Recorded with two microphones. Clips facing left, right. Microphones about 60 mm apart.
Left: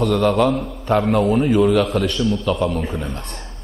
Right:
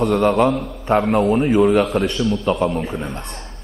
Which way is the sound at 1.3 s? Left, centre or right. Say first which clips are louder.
Right 1 dB; centre.